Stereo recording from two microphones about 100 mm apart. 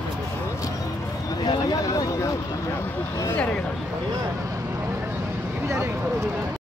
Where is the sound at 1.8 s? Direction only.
35° left (ahead or behind).